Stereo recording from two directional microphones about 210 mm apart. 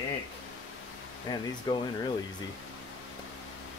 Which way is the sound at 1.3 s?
20° left (ahead or behind).